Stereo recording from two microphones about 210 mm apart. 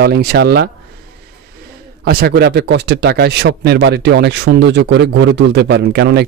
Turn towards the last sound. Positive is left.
turn(degrees=-50)  # may be behind; listen again after turning